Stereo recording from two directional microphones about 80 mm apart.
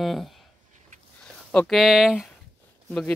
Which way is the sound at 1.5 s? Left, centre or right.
Centre.